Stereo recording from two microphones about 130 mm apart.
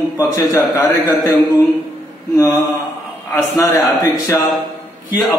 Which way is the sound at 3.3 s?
20° left (ahead or behind).